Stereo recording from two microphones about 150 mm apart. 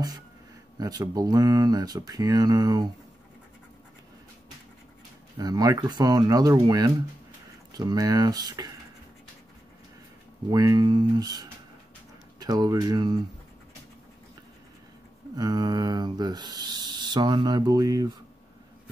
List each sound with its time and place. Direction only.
0.7 s speech: 25° right (ahead or behind)
5.4 s speech: 25° right (ahead or behind)
10.5 s speech: 25° right (ahead or behind)
15.3 s speech: 25° right (ahead or behind)